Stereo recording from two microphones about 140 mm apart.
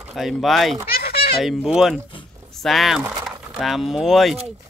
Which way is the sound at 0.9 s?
90° left.